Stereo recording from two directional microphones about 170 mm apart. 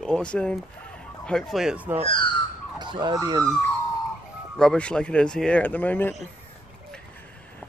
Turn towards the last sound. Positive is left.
turn(degrees=10)  # may be behind; listen again after turning